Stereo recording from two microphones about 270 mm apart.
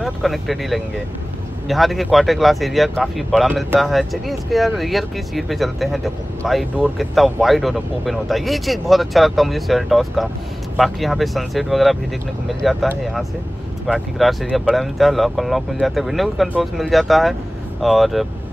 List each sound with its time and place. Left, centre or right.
0.0 s speech: centre